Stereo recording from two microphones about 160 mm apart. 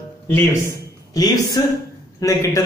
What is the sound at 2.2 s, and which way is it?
Speech, 20° left (ahead or behind).